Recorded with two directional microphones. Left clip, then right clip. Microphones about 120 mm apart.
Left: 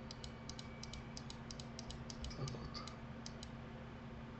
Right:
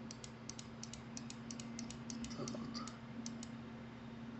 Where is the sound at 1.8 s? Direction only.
25° right (ahead or behind).